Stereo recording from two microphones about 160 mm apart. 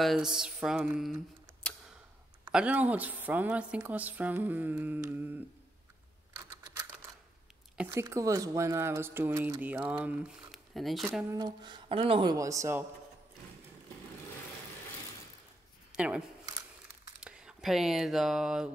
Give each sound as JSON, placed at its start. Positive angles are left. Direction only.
{"t": 0.0, "sound": "mantra", "side_deg": 0}
{"t": 1.6, "sound": "tick", "side_deg": 5}
{"t": 2.5, "sound": "a woman's voice", "side_deg": -10}
{"t": 7.7, "sound": "a woman's voice", "side_deg": -10}
{"t": 11.3, "sound": "speech", "side_deg": -25}
{"t": 12.4, "sound": "speech", "side_deg": -20}
{"t": 15.9, "sound": "a sound", "side_deg": -5}
{"t": 17.2, "sound": "speech", "side_deg": -5}